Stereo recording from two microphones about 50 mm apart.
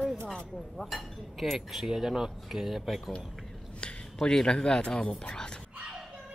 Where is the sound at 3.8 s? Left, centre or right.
Centre.